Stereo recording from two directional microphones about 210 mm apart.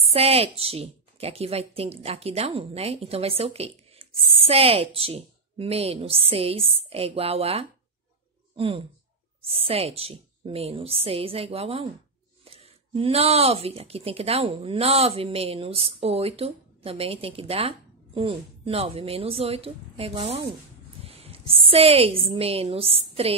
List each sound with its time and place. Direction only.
0.0 s a woman's voice: 30° right (ahead or behind)